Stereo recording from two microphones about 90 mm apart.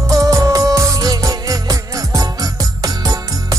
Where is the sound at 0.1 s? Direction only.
40° right (ahead or behind).